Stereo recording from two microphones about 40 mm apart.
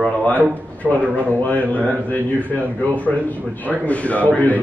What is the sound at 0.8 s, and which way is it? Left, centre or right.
Speech, centre.